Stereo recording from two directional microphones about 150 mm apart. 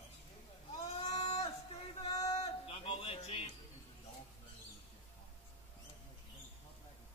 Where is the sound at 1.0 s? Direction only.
45° left (ahead or behind).